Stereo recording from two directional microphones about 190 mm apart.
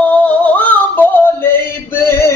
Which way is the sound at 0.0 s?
5° left (ahead or behind).